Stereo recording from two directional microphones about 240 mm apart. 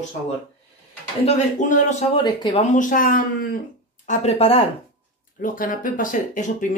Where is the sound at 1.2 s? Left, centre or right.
Left.